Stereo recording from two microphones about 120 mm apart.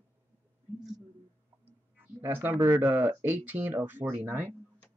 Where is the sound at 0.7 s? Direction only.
5° right (ahead or behind).